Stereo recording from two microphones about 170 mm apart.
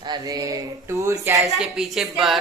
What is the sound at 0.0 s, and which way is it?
Speech, 25° right (ahead or behind).